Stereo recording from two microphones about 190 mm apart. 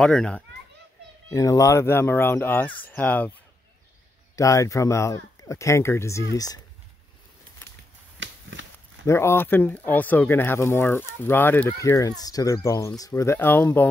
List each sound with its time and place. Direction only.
0.0 s a child's voice: 5° left (ahead or behind)
1.3 s speech: 15° left (ahead or behind)
4.4 s speech: 15° left (ahead or behind)
8.2 s a sound: 75° right (ahead or behind)
9.0 s speech: 15° left (ahead or behind)